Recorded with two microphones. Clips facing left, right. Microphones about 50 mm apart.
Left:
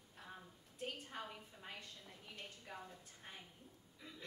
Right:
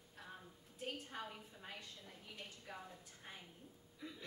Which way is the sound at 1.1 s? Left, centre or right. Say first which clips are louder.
Even; centre.